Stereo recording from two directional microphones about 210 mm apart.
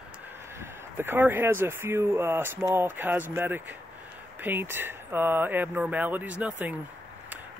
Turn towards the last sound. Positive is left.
turn(degrees=-5)  # may be behind; listen again after turning